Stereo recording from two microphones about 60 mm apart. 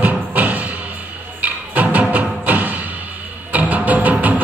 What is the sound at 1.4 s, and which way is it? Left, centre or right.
Music, right.